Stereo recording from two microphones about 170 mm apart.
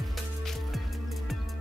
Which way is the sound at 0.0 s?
Centre (ahead or behind).